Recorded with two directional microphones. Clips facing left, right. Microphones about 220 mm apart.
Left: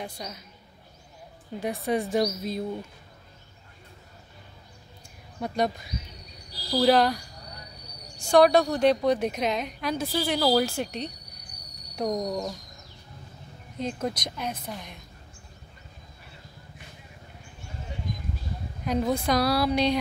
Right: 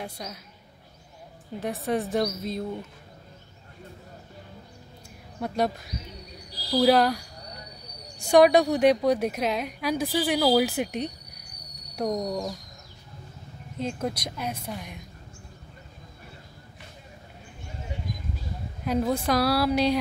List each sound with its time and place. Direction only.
0.0 s speech: 5° right (ahead or behind)
1.6 s speech: centre (ahead or behind)
5.4 s speech: 5° right (ahead or behind)
8.3 s a woman's voice: 15° right (ahead or behind)
11.9 s speech: 5° right (ahead or behind)
13.7 s a woman's voice: 5° right (ahead or behind)
18.9 s speech: 5° right (ahead or behind)